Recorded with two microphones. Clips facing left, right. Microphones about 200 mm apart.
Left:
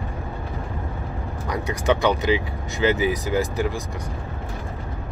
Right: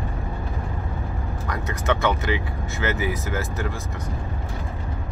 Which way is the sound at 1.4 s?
15° left (ahead or behind).